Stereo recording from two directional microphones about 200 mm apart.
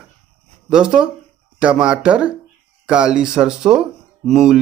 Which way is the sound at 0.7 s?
5° right (ahead or behind).